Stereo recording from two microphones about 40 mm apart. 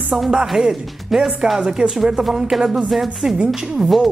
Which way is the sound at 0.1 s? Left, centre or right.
Centre.